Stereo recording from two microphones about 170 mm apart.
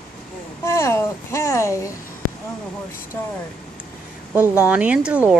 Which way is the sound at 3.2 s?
15° left (ahead or behind).